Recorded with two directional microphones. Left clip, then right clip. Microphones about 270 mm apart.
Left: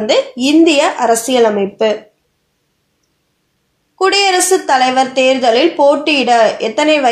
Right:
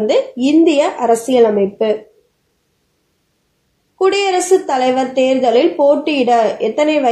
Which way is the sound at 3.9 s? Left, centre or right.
Left.